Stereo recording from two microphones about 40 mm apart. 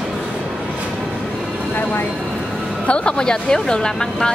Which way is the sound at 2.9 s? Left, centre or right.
Left.